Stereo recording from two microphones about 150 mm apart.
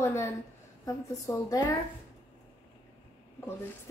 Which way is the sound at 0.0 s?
15° left (ahead or behind).